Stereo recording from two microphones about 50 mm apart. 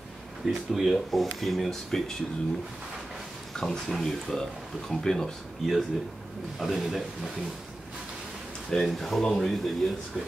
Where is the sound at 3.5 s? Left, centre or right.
Centre.